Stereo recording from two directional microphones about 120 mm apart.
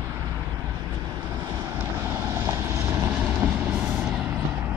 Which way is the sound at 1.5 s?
20° right (ahead or behind).